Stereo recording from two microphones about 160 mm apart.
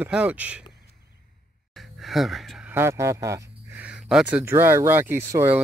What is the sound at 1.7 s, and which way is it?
Gasp, centre (ahead or behind).